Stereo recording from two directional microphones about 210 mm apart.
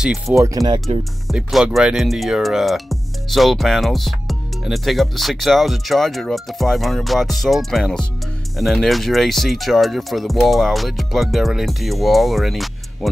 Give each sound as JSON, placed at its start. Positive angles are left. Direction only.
{"t": 0.0, "sound": "speech", "side_deg": -5}
{"t": 0.4, "sound": "speech", "side_deg": -15}
{"t": 1.2, "sound": "speech", "side_deg": 0}